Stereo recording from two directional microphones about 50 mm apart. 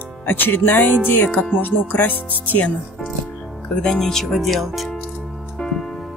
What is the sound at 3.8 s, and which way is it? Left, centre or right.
Speech, centre.